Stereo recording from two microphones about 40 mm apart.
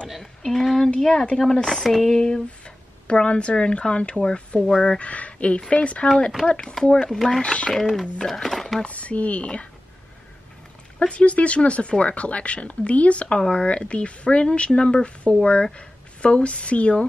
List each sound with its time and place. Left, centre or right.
0.2 s speech: centre
0.8 s speech: centre
2.1 s speech: centre
2.6 s speech: left
4.6 s speech: centre
4.8 s speech: left
7.1 s speech: centre
7.4 s speech: left
7.7 s speech: centre
8.8 s speech: left
11.0 s speech: left